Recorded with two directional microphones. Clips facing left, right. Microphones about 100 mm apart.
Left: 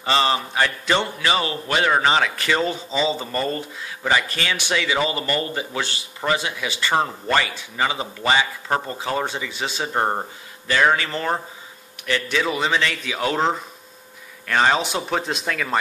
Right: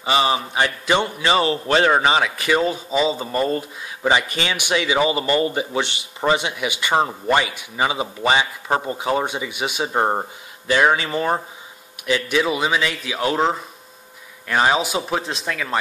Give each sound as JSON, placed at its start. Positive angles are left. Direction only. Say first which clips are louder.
{"t": 0.0, "sound": "a man's voice", "louder": "right 1 dB", "side_deg": -15}
{"t": 1.3, "sound": "a man's voice", "louder": "right 6 dB", "side_deg": -30}